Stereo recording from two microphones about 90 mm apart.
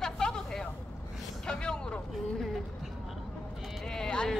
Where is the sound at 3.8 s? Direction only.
10° left (ahead or behind).